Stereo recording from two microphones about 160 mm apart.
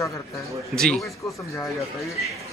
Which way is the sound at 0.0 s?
20° left (ahead or behind).